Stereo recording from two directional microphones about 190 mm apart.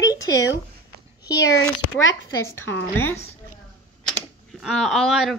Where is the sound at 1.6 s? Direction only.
90° left.